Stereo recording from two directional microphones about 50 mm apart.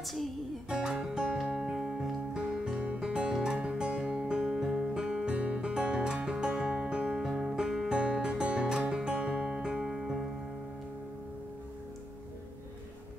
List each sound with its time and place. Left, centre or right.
0.0 s music: centre
0.7 s music: centre
2.3 s music: centre